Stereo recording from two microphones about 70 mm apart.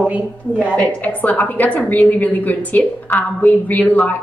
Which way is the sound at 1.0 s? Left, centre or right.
Left.